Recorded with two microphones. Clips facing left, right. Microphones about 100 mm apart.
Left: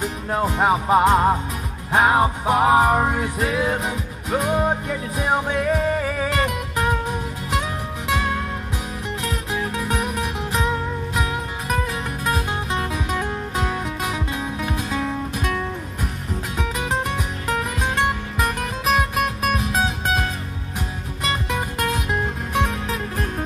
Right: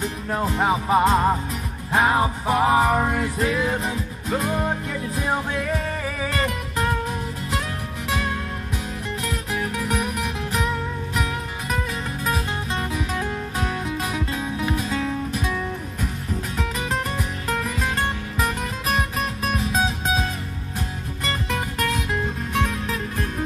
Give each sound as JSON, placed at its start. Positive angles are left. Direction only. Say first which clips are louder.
{"t": 0.0, "sound": "music", "louder": "left 2 dB", "side_deg": 20}
{"t": 9.2, "sound": "music", "louder": "left 1 dB", "side_deg": 20}
{"t": 14.1, "sound": "music", "louder": "even", "side_deg": 15}
{"t": 16.5, "sound": "music", "louder": "left 3 dB", "side_deg": 20}
{"t": 21.2, "sound": "music", "louder": "left 2 dB", "side_deg": 15}